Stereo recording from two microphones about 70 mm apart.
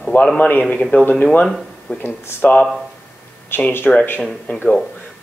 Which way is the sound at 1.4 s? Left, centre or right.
Centre.